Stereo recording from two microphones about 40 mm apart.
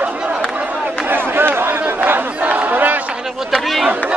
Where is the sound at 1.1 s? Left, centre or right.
Right.